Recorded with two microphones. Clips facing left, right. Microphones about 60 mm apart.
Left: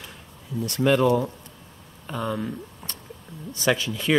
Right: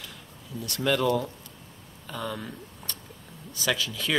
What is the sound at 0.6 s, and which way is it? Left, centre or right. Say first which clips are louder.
Speech: left 6 dB; left.